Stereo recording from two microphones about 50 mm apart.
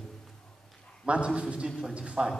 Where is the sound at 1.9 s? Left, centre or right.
Centre.